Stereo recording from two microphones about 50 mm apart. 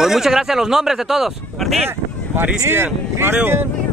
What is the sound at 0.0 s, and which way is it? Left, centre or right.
Speech, centre.